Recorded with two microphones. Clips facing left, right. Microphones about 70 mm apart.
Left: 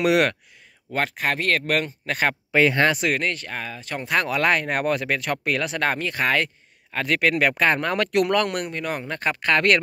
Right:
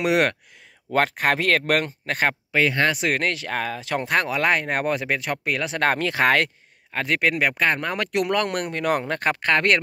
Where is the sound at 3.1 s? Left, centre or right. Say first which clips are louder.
Right 2 dB; right.